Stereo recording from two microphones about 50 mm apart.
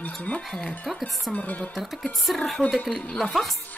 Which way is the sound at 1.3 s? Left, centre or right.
Left.